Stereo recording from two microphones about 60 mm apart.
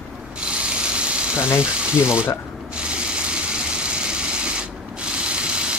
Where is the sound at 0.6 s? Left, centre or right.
Centre.